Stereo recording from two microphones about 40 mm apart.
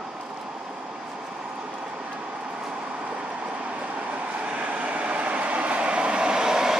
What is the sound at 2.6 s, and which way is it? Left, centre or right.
Vehicle, right.